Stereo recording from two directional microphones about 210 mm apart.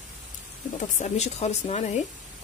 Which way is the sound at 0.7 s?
35° left (ahead or behind).